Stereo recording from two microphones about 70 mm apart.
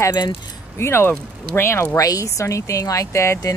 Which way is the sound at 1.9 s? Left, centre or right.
Left.